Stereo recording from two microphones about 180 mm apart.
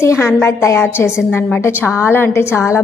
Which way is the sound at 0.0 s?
15° left (ahead or behind).